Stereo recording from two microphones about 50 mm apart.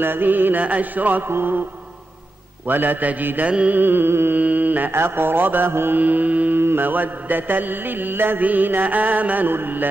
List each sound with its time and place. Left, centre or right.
0.0 s mantra: right
1.3 s speech: right
2.7 s mantra: right
3.4 s mantra: right
3.7 s speech: right
4.4 s mantra: right
4.9 s speech: right
5.9 s mantra: right
6.5 s mantra: right